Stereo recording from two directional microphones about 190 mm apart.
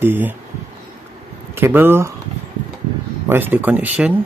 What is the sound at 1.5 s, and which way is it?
Speech, 10° right (ahead or behind).